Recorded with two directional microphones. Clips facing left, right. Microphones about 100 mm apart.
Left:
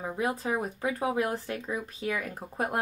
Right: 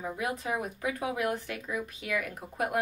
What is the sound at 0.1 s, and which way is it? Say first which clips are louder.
Speech: left 4 dB; 30° left (ahead or behind).